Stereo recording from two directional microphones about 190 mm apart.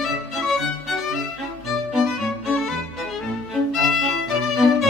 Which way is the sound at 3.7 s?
Centre (ahead or behind).